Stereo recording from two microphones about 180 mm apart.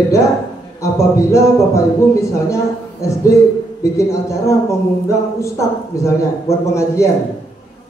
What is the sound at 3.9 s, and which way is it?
Speech, 15° left (ahead or behind).